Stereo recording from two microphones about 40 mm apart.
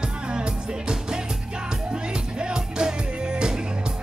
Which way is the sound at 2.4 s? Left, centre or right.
Centre.